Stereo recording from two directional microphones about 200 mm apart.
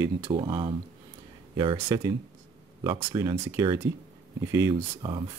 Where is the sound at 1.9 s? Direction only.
15° right (ahead or behind).